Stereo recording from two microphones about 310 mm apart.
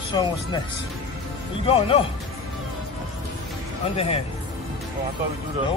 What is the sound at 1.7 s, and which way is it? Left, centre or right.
Speech, centre.